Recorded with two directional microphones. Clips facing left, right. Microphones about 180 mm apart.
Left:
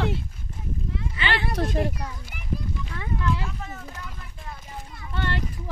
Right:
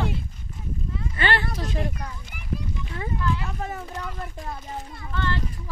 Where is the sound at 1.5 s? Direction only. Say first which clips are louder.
Left 5 dB; 55° left (ahead or behind).